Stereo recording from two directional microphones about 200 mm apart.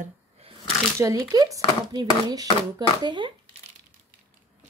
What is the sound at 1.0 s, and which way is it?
Speech, 20° right (ahead or behind).